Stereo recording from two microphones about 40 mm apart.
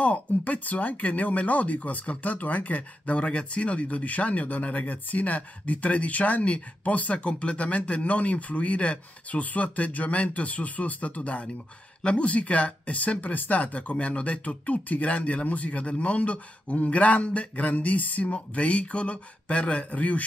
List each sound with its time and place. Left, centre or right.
0.0 s speech: left
13.9 s speech: left